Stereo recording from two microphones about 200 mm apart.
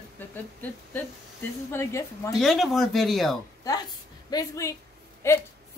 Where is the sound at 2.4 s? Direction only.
Centre (ahead or behind).